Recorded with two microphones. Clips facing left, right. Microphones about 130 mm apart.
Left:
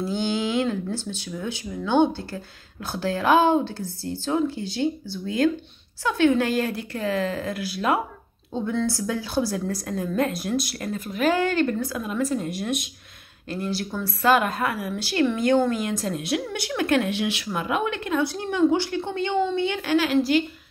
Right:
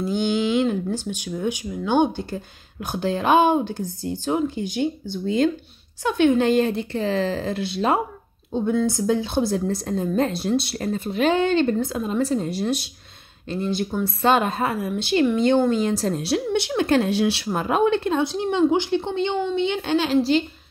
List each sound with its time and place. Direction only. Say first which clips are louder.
0.0 s a woman's voice: right 3 dB; 15° right (ahead or behind); by 12.9 s 30° right (ahead or behind)
13.5 s a woman's voice: right 4 dB; 20° right (ahead or behind)
16.5 s a woman's voice: right 3 dB; 25° right (ahead or behind)